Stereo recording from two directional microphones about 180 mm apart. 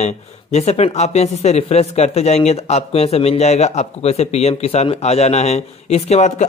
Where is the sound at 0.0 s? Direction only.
35° left (ahead or behind).